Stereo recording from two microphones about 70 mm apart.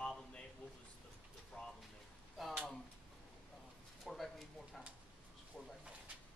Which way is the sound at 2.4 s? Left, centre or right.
Centre.